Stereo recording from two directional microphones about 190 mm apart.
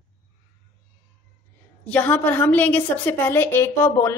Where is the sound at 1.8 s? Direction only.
10° left (ahead or behind).